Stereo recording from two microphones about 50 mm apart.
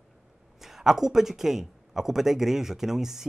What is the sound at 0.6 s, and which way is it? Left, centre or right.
Speech, centre.